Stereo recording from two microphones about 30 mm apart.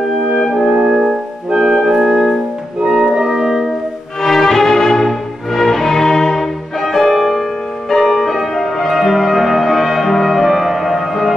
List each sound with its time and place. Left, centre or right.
0.8 s music: centre
4.2 s music: centre